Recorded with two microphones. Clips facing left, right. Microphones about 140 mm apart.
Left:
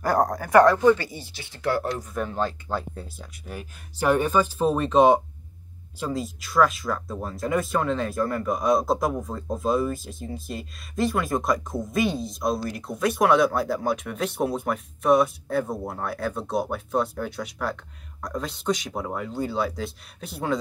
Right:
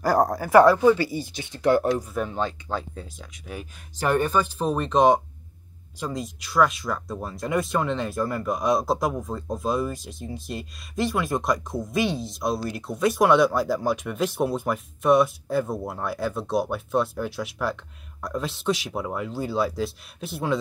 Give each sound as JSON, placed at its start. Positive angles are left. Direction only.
{"t": 0.0, "sound": "speech", "side_deg": 0}
{"t": 2.1, "sound": "speech", "side_deg": 0}